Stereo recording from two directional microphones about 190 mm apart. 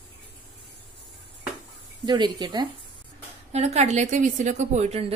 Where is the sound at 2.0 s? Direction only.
25° right (ahead or behind).